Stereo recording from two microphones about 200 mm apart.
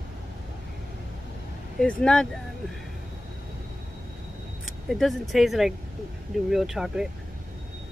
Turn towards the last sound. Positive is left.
turn(degrees=-5)  # may be behind; listen again after turning